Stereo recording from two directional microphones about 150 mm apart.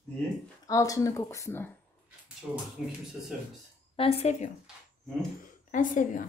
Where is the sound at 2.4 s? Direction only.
Centre (ahead or behind).